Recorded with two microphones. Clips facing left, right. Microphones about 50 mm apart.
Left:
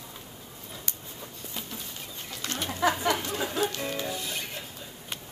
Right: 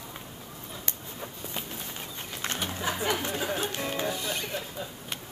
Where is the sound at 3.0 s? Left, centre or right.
Right.